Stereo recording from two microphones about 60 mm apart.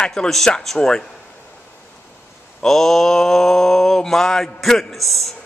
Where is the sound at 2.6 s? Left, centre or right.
Centre.